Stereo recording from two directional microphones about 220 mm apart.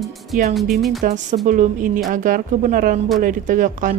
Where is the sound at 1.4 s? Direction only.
35° right (ahead or behind).